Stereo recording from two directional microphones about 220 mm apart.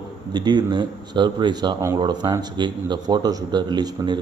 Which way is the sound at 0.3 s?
20° right (ahead or behind).